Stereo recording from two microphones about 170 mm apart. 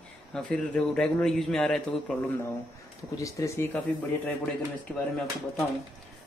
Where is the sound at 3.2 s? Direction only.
20° left (ahead or behind).